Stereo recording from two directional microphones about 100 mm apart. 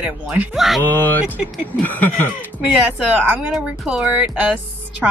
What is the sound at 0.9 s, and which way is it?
Speech, 20° left (ahead or behind).